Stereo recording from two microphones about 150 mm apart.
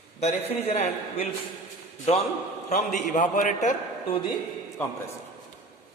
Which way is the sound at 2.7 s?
55° left (ahead or behind).